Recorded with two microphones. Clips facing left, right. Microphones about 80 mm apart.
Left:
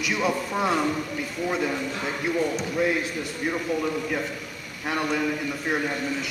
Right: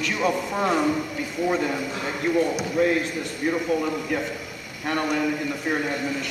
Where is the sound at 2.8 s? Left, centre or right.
Centre.